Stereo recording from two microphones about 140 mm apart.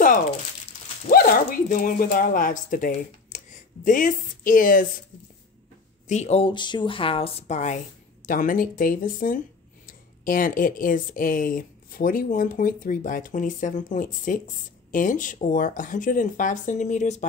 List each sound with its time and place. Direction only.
1.0 s speech: 90° left
6.0 s a woman's voice: 55° left (ahead or behind)
8.3 s speech: 75° left (ahead or behind); by 17.3 s 60° left (ahead or behind)